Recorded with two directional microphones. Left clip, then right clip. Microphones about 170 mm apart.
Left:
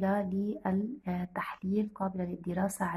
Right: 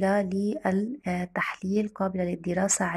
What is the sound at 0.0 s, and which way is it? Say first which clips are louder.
Speech: right 7 dB; 30° right (ahead or behind).